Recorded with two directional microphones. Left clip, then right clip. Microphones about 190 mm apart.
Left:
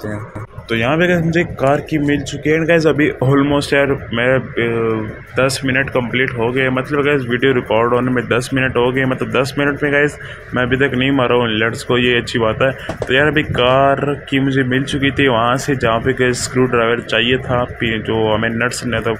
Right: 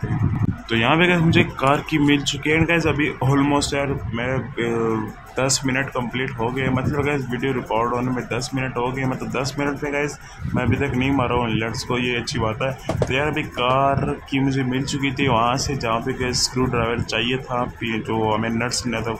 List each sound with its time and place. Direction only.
0.7 s speech: 15° left (ahead or behind)
2.4 s speech: 15° left (ahead or behind)